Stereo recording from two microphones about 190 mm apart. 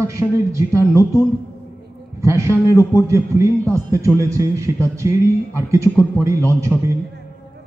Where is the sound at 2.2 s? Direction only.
15° right (ahead or behind).